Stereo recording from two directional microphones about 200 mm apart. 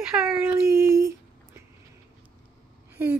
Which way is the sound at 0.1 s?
10° right (ahead or behind).